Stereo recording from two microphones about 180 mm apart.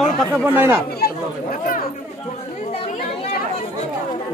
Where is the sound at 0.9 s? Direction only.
55° left (ahead or behind).